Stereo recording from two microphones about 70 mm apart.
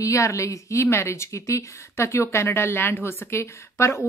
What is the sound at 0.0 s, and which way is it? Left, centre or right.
A woman's voice, left.